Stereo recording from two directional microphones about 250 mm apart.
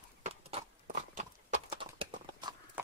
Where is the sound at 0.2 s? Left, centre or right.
Right.